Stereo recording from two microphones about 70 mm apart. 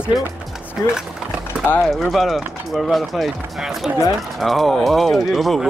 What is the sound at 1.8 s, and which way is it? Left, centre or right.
Speech, centre.